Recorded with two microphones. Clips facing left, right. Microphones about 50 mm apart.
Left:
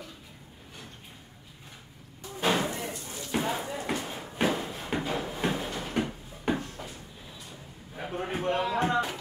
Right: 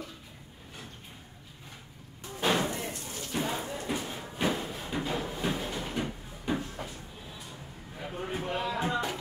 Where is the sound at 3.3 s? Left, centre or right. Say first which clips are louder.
Left 3 dB; centre.